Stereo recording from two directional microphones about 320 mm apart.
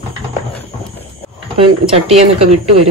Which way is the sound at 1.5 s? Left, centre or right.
Centre.